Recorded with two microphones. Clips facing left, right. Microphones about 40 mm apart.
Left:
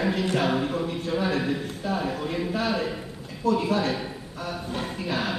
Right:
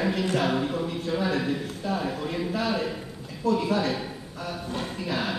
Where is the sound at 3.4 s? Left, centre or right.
Left.